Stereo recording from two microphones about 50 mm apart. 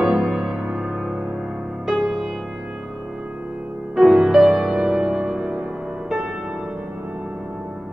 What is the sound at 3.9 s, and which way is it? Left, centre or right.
Music, centre.